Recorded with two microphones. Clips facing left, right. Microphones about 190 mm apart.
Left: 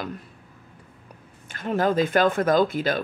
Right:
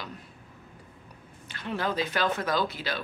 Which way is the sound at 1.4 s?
45° left (ahead or behind).